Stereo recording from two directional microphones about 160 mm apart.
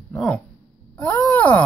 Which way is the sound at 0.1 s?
5° left (ahead or behind).